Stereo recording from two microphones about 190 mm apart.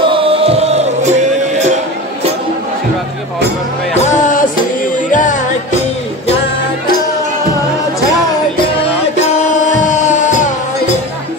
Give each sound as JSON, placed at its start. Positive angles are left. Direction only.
{"t": 0.0, "sound": "music", "side_deg": -30}
{"t": 3.9, "sound": "music", "side_deg": 40}
{"t": 9.2, "sound": "music", "side_deg": 40}